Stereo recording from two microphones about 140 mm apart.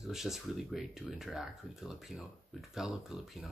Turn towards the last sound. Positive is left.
turn(degrees=0)  # may be behind; listen again after turning